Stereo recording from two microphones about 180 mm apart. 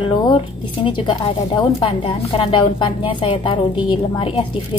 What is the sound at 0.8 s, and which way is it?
A woman's voice, 25° left (ahead or behind).